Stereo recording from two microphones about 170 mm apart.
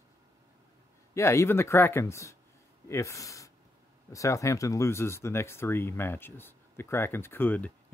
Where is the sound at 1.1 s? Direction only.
15° left (ahead or behind).